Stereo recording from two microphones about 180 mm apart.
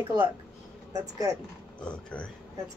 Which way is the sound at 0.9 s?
20° right (ahead or behind).